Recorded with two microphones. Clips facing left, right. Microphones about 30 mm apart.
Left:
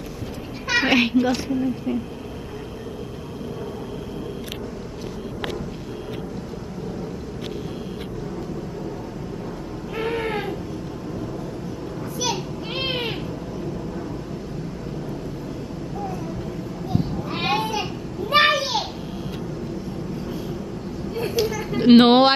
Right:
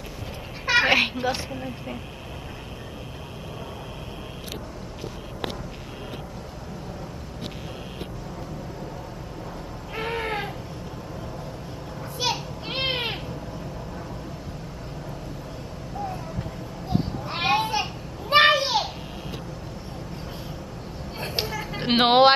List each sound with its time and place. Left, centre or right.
0.8 s a woman's voice: centre
9.9 s owl: centre
12.7 s owl: right
17.4 s a sound: right
18.3 s children playing: right
21.2 s a sound: right
21.6 s music: centre